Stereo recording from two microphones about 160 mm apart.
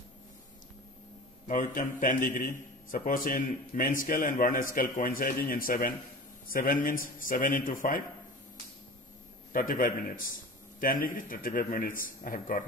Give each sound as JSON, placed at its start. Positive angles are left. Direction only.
{"t": 1.5, "sound": "a man's voice", "side_deg": 55}
{"t": 9.5, "sound": "a man's voice", "side_deg": 60}